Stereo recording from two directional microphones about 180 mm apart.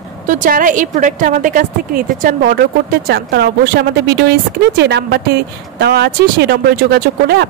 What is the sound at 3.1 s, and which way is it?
A woman's voice, 60° right (ahead or behind).